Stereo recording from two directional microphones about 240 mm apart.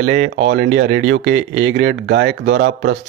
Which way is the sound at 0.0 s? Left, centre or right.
Right.